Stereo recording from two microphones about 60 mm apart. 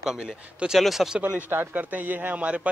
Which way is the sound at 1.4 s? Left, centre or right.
Right.